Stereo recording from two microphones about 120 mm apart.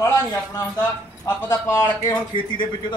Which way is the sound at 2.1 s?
45° left (ahead or behind).